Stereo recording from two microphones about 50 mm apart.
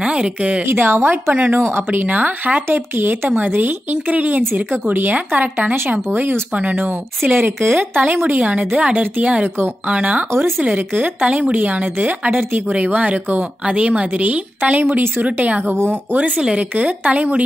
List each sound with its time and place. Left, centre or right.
0.0 s a woman's voice: right
0.7 s a woman's voice: right
2.0 s speech: right
6.1 s a woman's voice: right
6.5 s speech: right
7.3 s a woman's voice: right
15.3 s a woman's voice: right
15.6 s a woman's voice: right
16.2 s a woman's voice: right